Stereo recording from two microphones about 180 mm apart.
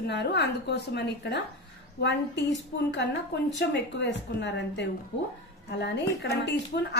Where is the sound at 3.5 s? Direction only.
70° left (ahead or behind).